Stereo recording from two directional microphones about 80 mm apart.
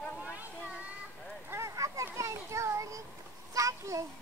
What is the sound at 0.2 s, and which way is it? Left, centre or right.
Children playing, centre.